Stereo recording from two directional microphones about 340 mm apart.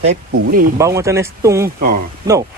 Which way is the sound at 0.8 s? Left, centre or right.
Centre.